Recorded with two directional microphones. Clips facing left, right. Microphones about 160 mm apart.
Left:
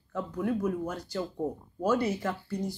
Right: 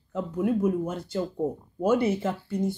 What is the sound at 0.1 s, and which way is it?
Speech, 20° right (ahead or behind).